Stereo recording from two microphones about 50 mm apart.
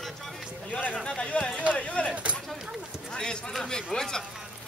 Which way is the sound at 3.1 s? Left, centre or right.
Centre.